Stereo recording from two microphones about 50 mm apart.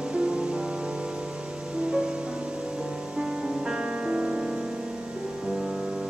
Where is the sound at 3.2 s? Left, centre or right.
Centre.